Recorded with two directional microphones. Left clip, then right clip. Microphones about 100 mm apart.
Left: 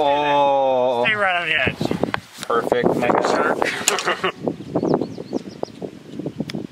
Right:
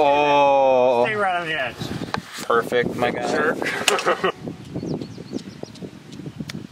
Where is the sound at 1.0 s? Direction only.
40° left (ahead or behind).